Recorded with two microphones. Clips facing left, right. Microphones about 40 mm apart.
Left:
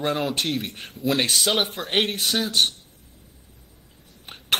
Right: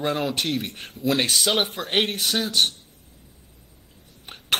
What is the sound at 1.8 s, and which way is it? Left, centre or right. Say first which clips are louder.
Speech: right 1 dB; centre.